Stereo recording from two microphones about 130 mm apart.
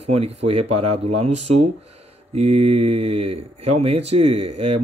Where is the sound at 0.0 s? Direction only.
50° right (ahead or behind).